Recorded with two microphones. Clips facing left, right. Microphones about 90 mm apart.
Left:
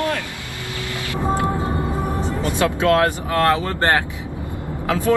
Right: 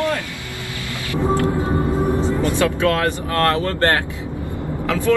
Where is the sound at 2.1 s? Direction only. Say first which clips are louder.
Right 5 dB; 20° right (ahead or behind).